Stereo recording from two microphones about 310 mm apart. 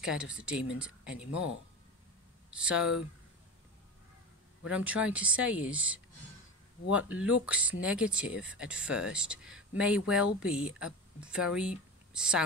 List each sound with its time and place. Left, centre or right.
0.0 s speech: centre
2.5 s speech: centre
4.6 s speech: centre